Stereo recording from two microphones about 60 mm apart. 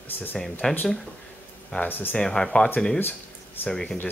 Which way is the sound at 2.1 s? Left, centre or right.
Centre.